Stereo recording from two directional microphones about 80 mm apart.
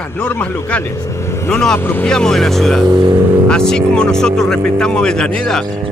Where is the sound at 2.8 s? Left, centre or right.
Right.